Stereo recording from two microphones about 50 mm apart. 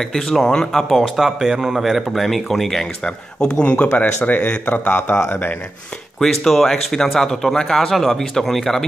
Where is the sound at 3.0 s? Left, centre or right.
Centre.